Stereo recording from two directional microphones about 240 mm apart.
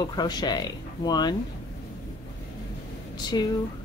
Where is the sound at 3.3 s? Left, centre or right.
Centre.